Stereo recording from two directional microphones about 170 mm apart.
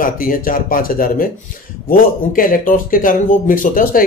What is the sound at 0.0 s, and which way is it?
Speech, 55° left (ahead or behind).